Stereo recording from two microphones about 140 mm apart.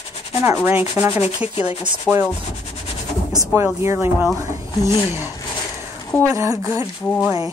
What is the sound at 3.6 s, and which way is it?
Speech, 20° right (ahead or behind).